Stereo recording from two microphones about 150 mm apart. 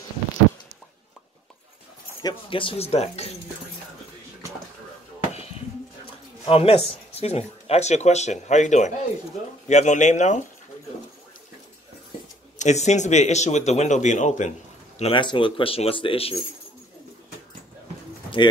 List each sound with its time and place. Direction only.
2.2 s speech: 35° left (ahead or behind)
6.4 s speech: 40° left (ahead or behind)
12.5 s speech: 50° left (ahead or behind)
15.0 s speech: 35° left (ahead or behind)